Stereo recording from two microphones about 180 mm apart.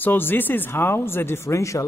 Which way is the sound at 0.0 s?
10° left (ahead or behind).